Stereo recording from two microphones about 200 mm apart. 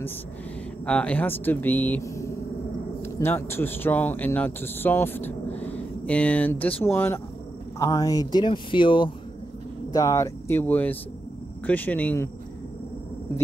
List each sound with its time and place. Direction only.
0.8 s speech: 5° left (ahead or behind)